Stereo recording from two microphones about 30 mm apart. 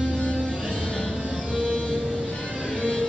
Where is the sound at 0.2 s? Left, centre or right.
Left.